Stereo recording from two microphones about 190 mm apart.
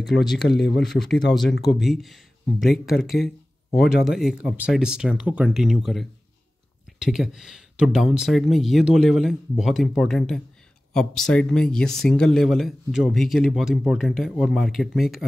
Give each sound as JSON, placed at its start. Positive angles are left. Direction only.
{"t": 0.1, "sound": "speech", "side_deg": 0}
{"t": 0.5, "sound": "speech", "side_deg": 60}
{"t": 0.7, "sound": "speech", "side_deg": 0}